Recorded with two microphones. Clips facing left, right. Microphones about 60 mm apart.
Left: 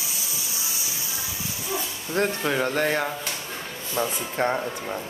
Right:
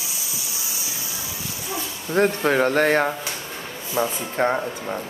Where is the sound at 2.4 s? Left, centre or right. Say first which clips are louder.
Right 5 dB; right.